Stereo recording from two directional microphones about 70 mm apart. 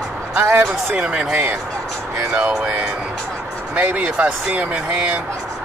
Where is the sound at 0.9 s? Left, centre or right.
Centre.